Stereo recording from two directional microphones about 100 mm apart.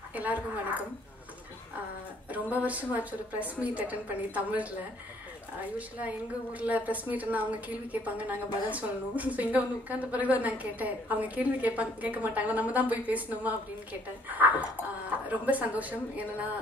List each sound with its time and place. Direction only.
0.1 s speech: 15° right (ahead or behind)
2.3 s a woman's voice: 15° right (ahead or behind)
5.8 s a woman's voice: 15° right (ahead or behind)